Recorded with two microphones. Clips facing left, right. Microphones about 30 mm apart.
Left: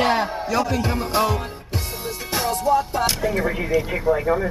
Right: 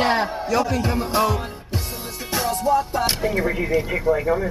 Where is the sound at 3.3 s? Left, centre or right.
Centre.